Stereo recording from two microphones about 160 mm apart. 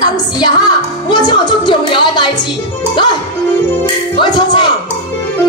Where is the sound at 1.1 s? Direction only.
30° left (ahead or behind).